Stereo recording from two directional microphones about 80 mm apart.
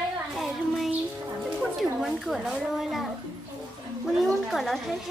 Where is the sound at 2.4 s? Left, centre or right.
Centre.